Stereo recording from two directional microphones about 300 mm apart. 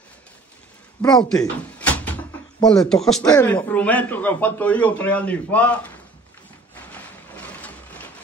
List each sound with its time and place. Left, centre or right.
1.3 s door: centre
3.2 s a man's voice: centre
6.9 s a sound: centre